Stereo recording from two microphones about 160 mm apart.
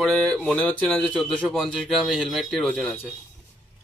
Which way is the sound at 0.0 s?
10° left (ahead or behind).